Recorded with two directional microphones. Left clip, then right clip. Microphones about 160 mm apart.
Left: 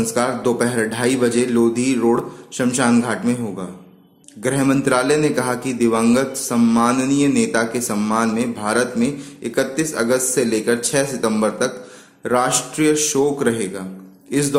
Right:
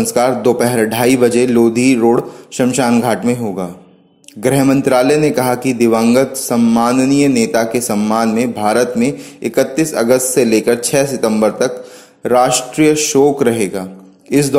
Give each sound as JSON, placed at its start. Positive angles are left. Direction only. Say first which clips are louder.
{"t": 0.0, "sound": "a man's voice", "louder": "right 7 dB", "side_deg": -35}